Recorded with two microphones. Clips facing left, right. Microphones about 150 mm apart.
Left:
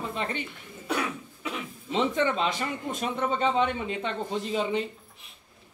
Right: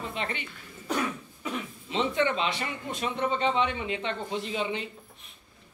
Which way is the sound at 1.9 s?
45° left (ahead or behind).